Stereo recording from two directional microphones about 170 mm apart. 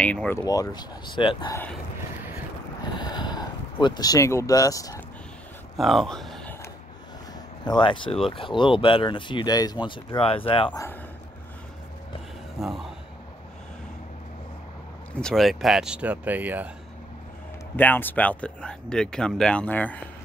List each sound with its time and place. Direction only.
0.0 s speech: 10° left (ahead or behind)
0.4 s speech: 20° left (ahead or behind)
3.0 s a sound: 25° left (ahead or behind)
3.8 s speech: 25° left (ahead or behind)
5.8 s speech: centre (ahead or behind)
7.6 s speech: 25° left (ahead or behind)
12.5 s speech: centre (ahead or behind)
15.1 s speech: 5° left (ahead or behind)
17.7 s speech: 10° left (ahead or behind)